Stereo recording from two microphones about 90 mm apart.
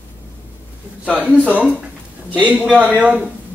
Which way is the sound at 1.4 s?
15° right (ahead or behind).